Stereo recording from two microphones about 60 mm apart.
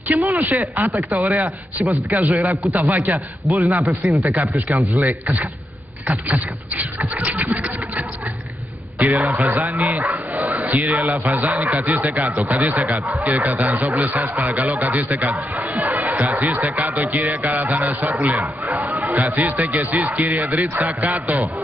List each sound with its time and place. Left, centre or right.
0.1 s speech: right
6.7 s speech: right
9.3 s speech: right
15.3 s speech: right
18.4 s speech: right
19.0 s speech: right